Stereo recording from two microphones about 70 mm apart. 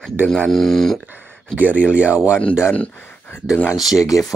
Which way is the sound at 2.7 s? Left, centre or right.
Left.